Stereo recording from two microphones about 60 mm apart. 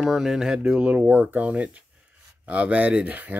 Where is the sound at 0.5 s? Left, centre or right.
Centre.